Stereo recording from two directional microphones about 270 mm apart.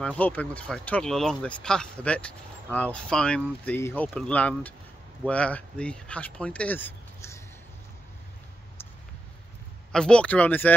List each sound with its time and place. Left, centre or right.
0.0 s speech: centre
9.9 s speech: centre